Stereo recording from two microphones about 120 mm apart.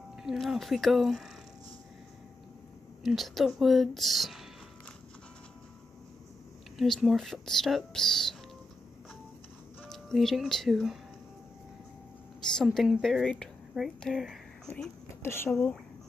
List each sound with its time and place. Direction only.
0.2 s speech: 5° right (ahead or behind)
3.0 s speech: centre (ahead or behind)
6.8 s speech: centre (ahead or behind)
9.8 s speech: 5° left (ahead or behind)
12.5 s speech: centre (ahead or behind)
15.2 s speech: 20° left (ahead or behind)
15.5 s speech: 5° left (ahead or behind)